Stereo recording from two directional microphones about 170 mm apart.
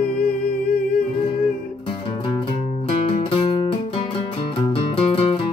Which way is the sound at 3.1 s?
35° left (ahead or behind).